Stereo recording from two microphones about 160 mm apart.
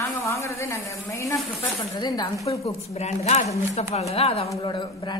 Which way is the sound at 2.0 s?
25° left (ahead or behind).